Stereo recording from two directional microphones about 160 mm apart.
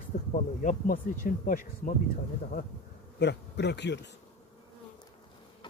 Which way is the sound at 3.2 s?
90° left.